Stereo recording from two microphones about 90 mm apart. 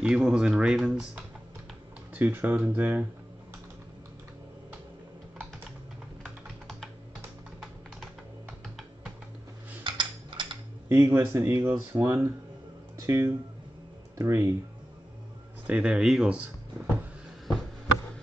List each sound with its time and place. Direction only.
0.0 s speech: 5° right (ahead or behind)
2.1 s speech: 20° right (ahead or behind)
6.2 s typing: centre (ahead or behind)
9.8 s a sound: 65° right (ahead or behind)
10.9 s speech: 30° right (ahead or behind)
15.6 s speech: 15° right (ahead or behind)
16.3 s a sound: 15° right (ahead or behind)